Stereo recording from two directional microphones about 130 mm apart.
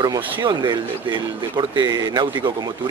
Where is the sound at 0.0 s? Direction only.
35° right (ahead or behind).